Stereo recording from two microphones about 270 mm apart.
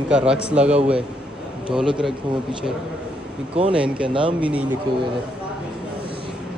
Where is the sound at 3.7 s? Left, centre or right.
Centre.